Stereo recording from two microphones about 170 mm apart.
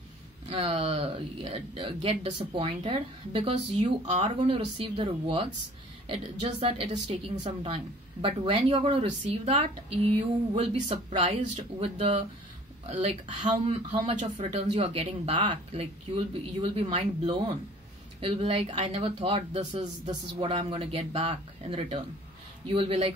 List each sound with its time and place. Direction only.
0.5 s speech: 30° right (ahead or behind)